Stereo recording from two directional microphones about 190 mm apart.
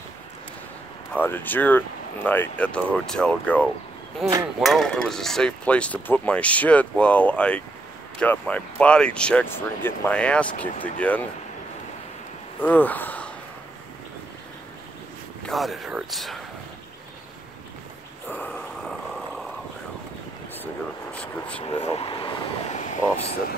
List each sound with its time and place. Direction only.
1.1 s speech: 10° left (ahead or behind)
12.6 s speech: 10° left (ahead or behind)
15.4 s speech: centre (ahead or behind)
18.3 s a sound: 5° left (ahead or behind)
21.1 s speech: 5° left (ahead or behind)
21.6 s vehicle: 30° left (ahead or behind)